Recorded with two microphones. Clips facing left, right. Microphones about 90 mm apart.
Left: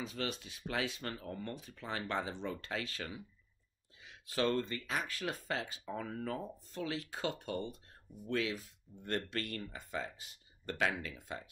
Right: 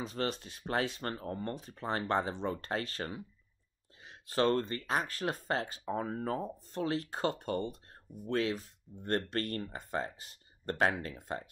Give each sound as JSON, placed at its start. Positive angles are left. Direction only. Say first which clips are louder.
{"t": 0.0, "sound": "speech", "louder": "right 4 dB", "side_deg": -40}